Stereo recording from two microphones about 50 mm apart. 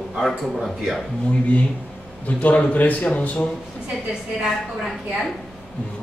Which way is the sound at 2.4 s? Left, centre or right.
Left.